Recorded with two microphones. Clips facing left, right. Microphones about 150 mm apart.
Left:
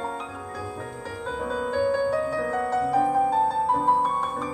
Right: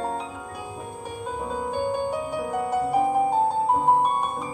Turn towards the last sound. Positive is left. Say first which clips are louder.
# right 2 dB
turn(degrees=-20)  # may be behind; listen again after turning